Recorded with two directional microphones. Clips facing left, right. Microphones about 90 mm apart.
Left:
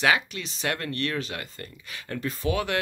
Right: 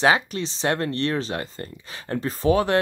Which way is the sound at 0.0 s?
30° right (ahead or behind).